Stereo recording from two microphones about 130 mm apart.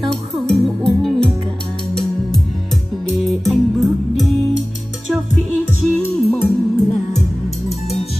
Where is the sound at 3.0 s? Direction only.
Centre (ahead or behind).